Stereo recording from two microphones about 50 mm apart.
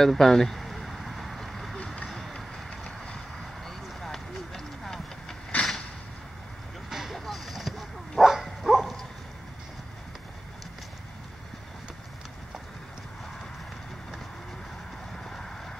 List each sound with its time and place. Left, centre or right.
0.0 s vehicle: centre
2.0 s run: centre
2.7 s vehicle: left
3.6 s a sound: centre
5.5 s a sound: left
6.9 s vehicle: centre
7.2 s a sound: centre
8.2 s bow-wow: centre
15.1 s clip-clop: centre